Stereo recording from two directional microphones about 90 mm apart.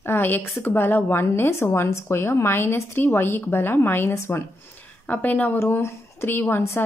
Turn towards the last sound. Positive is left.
turn(degrees=25)  # may be behind; listen again after turning